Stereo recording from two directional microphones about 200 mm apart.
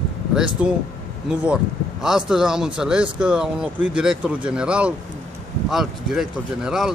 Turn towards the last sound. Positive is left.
turn(degrees=0)  # may be behind; listen again after turning